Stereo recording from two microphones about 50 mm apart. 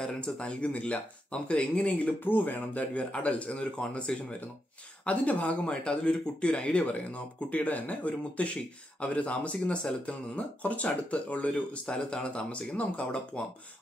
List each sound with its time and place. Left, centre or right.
0.0 s speech: centre
2.2 s speech: left